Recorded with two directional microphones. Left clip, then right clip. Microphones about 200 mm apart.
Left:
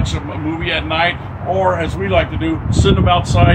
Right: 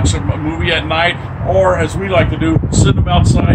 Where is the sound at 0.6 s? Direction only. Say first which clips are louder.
Right 3 dB; 25° right (ahead or behind).